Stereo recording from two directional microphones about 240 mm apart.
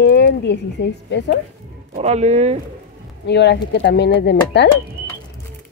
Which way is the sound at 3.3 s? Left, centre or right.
Left.